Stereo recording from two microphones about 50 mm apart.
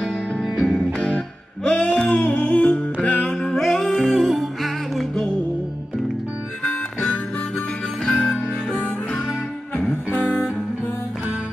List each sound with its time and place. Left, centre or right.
0.4 s music: centre
0.9 s music: left
1.7 s a sound: left
2.2 s music: left
3.5 s music: centre
7.0 s harmonica: left
8.6 s music: left